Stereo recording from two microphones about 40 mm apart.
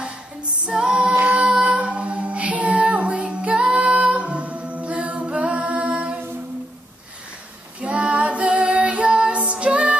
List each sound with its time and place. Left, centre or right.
0.7 s female singing: centre
1.2 s music: right
1.5 s female singing: right
7.8 s child singing: right